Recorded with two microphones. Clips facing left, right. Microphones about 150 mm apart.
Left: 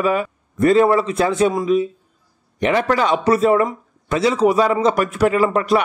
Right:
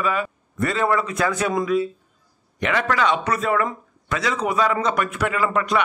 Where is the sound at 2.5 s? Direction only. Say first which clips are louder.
Left 5 dB; 30° left (ahead or behind).